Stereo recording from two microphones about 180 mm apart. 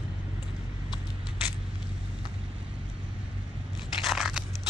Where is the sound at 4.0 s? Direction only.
Centre (ahead or behind).